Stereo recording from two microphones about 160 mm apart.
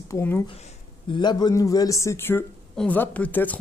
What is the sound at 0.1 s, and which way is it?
Speech, 15° left (ahead or behind).